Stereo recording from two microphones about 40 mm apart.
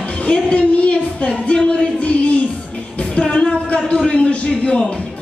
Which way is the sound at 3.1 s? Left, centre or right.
Left.